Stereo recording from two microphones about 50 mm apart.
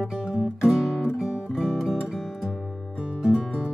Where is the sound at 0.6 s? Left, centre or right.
Centre.